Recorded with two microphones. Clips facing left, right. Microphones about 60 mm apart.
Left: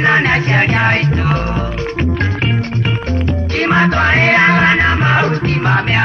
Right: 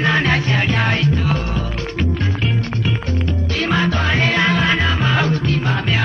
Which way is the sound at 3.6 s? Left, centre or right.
Left.